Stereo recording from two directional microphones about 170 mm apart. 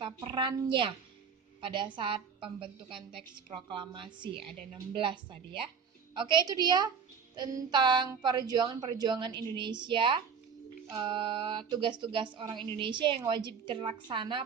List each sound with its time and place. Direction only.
0.0 s a woman's voice: 30° right (ahead or behind)
4.5 s frog: 30° right (ahead or behind)
6.1 s a woman's voice: 25° right (ahead or behind)